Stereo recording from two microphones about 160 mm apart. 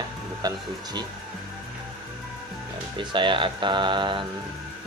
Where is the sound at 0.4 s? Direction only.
25° right (ahead or behind).